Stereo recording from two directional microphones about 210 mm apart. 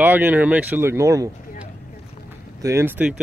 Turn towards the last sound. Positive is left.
turn(degrees=-10)  # may be behind; listen again after turning